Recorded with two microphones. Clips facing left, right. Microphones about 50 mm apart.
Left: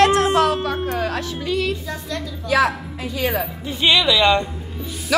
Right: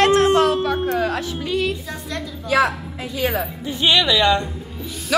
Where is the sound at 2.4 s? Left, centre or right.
Right.